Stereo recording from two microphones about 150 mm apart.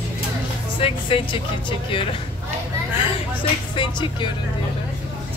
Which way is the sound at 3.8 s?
30° left (ahead or behind).